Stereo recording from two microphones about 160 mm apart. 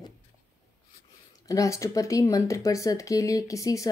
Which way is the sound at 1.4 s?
20° left (ahead or behind).